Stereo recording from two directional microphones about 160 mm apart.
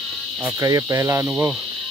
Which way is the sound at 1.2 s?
10° right (ahead or behind).